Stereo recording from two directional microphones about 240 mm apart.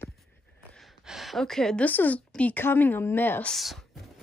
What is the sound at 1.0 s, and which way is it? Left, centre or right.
A woman's voice, centre.